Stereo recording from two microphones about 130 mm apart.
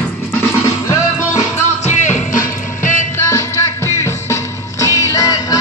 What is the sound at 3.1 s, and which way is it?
Music, 20° left (ahead or behind).